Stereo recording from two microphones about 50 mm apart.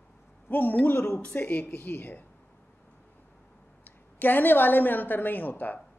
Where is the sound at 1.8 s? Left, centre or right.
Left.